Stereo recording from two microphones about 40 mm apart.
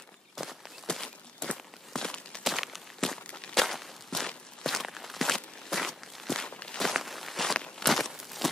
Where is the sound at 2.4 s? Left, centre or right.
Centre.